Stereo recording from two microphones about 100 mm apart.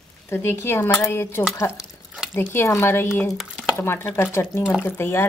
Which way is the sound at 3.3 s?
Centre (ahead or behind).